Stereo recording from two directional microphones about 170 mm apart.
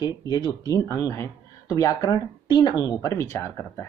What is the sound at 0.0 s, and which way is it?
Speech, 25° left (ahead or behind).